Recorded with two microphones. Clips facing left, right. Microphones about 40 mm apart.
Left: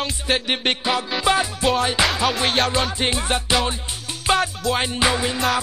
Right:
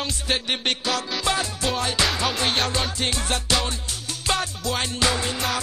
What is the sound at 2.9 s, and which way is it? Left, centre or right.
Music, left.